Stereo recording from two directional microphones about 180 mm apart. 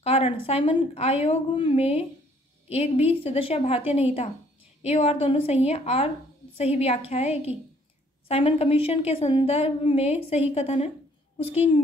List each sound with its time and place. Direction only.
0.0 s a woman's voice: 35° left (ahead or behind)
4.8 s a woman's voice: 35° left (ahead or behind)